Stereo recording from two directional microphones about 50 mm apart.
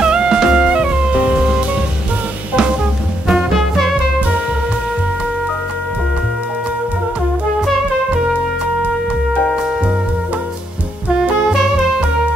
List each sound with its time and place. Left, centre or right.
0.0 s music: centre
3.3 s music: centre